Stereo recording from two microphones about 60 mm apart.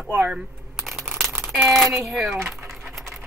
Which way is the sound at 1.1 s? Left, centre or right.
Centre.